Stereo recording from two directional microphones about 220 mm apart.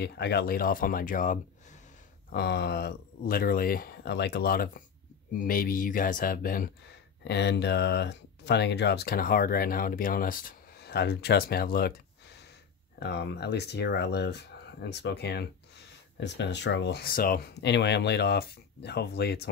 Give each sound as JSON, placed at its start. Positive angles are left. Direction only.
{"t": 0.0, "sound": "speech", "side_deg": 50}
{"t": 2.3, "sound": "speech", "side_deg": 50}
{"t": 7.2, "sound": "speech", "side_deg": 50}
{"t": 13.0, "sound": "speech", "side_deg": 50}